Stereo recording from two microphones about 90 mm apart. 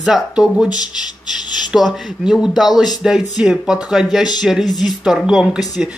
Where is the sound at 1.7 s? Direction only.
Centre (ahead or behind).